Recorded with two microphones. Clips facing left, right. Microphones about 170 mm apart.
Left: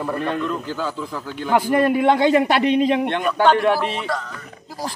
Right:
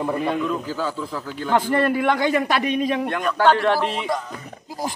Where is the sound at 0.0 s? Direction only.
10° right (ahead or behind); by 3.3 s 25° left (ahead or behind).